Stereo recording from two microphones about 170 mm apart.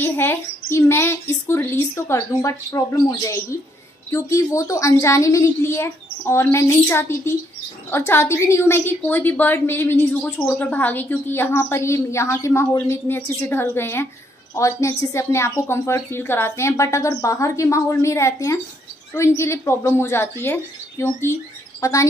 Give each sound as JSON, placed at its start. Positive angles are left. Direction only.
{"t": 0.0, "sound": "a woman's voice", "side_deg": 15}